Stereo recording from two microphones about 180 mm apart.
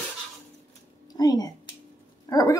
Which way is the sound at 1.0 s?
20° left (ahead or behind).